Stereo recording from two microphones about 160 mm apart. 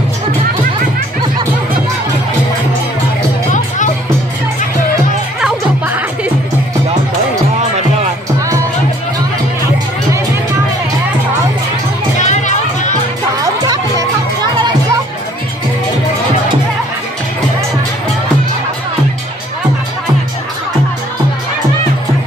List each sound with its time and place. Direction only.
5.4 s music: 10° right (ahead or behind)
12.2 s music: 45° left (ahead or behind)
13.7 s music: 25° right (ahead or behind)